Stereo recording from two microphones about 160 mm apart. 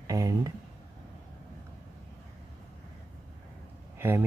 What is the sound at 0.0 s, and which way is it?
Speech, 20° right (ahead or behind).